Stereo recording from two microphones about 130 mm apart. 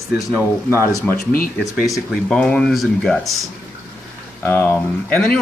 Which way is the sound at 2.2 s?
10° left (ahead or behind).